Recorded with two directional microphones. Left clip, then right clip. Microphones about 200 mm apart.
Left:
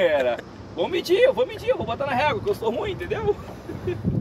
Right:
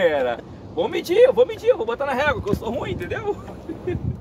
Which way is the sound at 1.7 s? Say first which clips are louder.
Right 4 dB; 45° right (ahead or behind).